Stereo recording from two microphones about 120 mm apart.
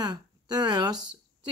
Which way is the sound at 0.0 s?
35° right (ahead or behind).